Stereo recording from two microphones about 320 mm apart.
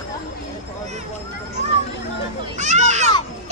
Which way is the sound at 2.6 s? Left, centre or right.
Right.